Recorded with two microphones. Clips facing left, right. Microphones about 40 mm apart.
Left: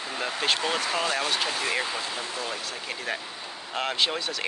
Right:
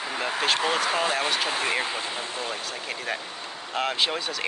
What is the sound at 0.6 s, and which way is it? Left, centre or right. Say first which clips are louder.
Speech: right 3 dB; centre.